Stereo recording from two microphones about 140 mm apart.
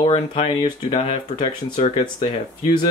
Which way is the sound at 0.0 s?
45° left (ahead or behind).